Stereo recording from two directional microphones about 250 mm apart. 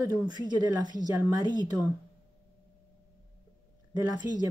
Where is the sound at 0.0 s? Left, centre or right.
Centre.